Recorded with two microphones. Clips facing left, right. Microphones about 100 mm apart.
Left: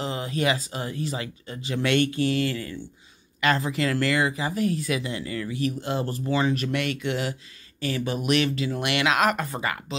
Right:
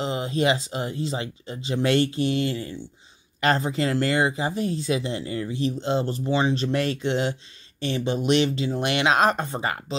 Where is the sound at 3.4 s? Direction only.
35° right (ahead or behind).